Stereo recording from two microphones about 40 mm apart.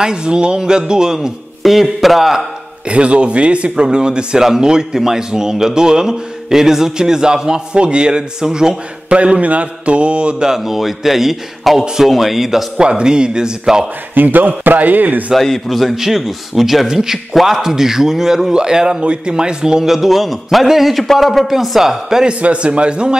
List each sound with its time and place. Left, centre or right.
0.0 s speech: right
1.6 s a man's voice: centre
2.9 s a man's voice: right
9.1 s speech: right
10.5 s a man's voice: centre
12.7 s speech: right
14.1 s a man's voice: right
15.3 s a man's voice: centre
17.3 s a man's voice: centre
22.2 s speech: right